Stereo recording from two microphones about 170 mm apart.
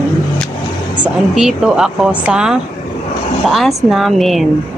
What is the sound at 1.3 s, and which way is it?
A woman's voice, 5° right (ahead or behind).